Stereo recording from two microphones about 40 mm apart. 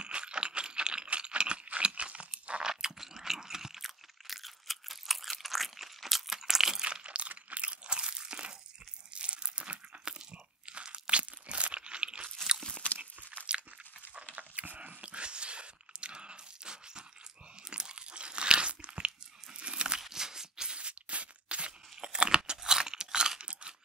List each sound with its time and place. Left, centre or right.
0.0 s rattle: right
2.4 s crunch: right
2.7 s crunch: centre
6.8 s crunch: right
14.3 s biting: right
17.6 s crunch: right
20.0 s shuffle: centre
20.8 s crunch: right